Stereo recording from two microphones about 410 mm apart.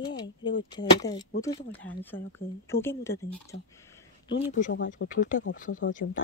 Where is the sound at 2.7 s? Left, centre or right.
Centre.